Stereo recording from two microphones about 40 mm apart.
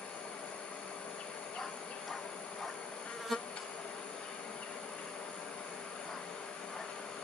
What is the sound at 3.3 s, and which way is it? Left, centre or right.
Bee, centre.